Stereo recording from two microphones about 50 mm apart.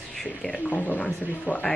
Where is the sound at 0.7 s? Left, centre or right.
Left.